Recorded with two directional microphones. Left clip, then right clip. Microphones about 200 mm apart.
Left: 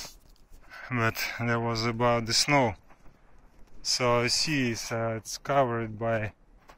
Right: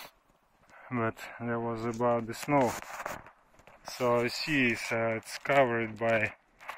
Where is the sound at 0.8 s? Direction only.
5° left (ahead or behind).